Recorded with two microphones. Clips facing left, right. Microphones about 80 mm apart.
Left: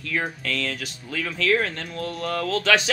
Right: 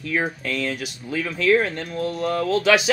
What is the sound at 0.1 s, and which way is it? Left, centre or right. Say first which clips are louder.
Speech: right 3 dB; centre.